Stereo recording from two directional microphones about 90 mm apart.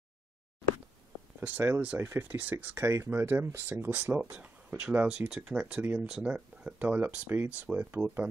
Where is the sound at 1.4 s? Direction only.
25° right (ahead or behind).